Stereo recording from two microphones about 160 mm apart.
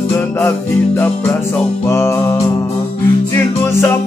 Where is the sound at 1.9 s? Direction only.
15° left (ahead or behind).